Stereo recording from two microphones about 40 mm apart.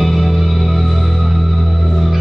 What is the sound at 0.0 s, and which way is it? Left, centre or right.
Music, centre.